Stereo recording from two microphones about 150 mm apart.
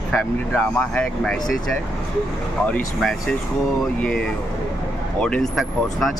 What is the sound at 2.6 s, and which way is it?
Speech, 10° left (ahead or behind).